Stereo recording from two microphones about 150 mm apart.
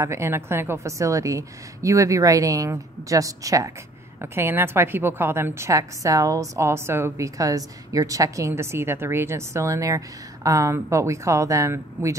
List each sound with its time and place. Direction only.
0.0 s a woman's voice: 15° right (ahead or behind)